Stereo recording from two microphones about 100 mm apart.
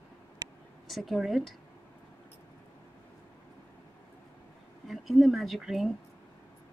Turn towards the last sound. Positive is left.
turn(degrees=0)  # may be behind; listen again after turning